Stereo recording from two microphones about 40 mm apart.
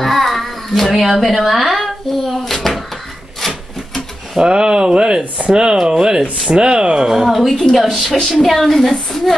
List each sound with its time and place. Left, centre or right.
0.0 s a sound: centre
1.0 s a woman's voice: centre
2.2 s a sound: centre
3.3 s rub: centre
4.4 s speech: centre
7.1 s speech: centre
7.3 s a woman's voice: centre